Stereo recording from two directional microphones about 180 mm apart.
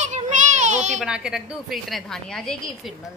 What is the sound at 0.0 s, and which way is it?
Child singing, 40° right (ahead or behind).